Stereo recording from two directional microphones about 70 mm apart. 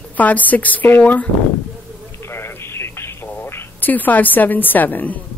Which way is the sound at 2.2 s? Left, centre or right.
Left.